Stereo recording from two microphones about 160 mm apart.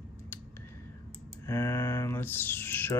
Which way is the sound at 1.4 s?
20° left (ahead or behind).